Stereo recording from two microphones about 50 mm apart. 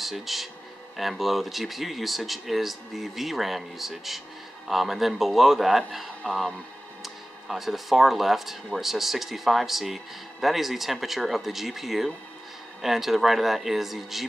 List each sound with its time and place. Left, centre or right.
0.0 s speech: centre